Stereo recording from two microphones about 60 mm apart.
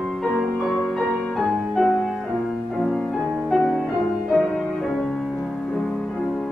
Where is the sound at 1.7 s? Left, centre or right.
Centre.